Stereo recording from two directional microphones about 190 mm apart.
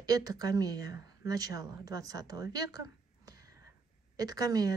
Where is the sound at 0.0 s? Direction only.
20° right (ahead or behind).